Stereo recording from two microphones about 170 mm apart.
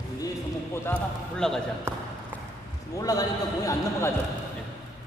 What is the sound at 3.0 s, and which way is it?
A man's voice, 20° left (ahead or behind).